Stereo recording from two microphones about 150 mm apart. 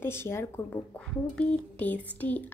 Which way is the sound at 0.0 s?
15° left (ahead or behind).